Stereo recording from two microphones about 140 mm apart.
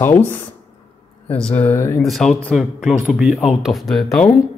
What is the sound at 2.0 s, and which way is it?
Speech, centre (ahead or behind).